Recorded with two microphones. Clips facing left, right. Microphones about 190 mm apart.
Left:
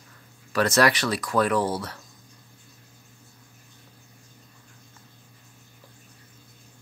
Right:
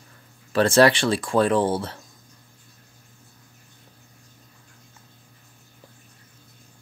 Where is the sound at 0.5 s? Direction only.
30° right (ahead or behind).